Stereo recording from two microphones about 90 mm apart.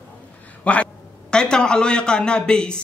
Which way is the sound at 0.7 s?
15° left (ahead or behind).